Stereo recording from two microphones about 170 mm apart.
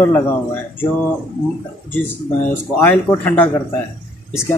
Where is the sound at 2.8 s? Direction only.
10° left (ahead or behind).